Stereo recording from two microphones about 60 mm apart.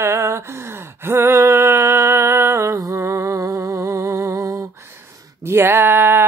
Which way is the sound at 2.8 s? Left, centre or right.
Right.